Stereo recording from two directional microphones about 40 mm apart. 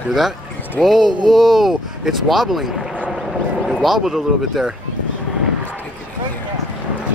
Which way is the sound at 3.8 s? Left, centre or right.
Centre.